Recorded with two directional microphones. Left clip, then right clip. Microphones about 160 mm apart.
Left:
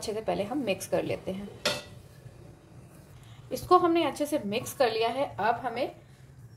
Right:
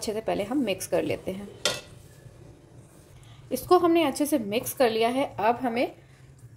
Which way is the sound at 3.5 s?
45° right (ahead or behind).